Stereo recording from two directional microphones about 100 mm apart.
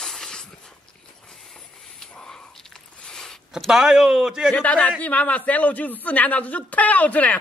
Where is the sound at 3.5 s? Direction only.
5° right (ahead or behind).